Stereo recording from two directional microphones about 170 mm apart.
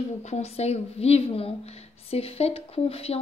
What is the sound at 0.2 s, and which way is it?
A woman's voice, 40° left (ahead or behind).